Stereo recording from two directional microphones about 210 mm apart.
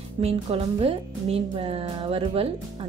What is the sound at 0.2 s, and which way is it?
Speech, 25° right (ahead or behind).